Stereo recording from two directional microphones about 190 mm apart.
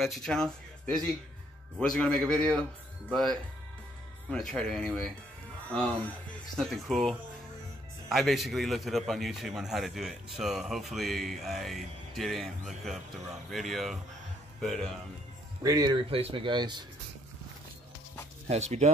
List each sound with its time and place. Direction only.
0.0 s a man's voice: centre (ahead or behind)
6.5 s a man's voice: centre (ahead or behind)
15.6 s speech: 20° right (ahead or behind)
18.5 s speech: 35° right (ahead or behind)